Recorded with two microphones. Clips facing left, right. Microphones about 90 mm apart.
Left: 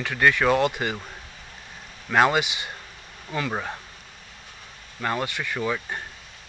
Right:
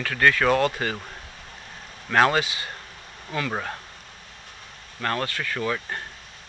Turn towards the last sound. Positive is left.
turn(degrees=5)  # may be behind; listen again after turning